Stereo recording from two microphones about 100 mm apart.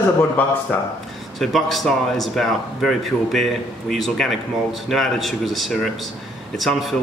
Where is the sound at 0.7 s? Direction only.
15° left (ahead or behind).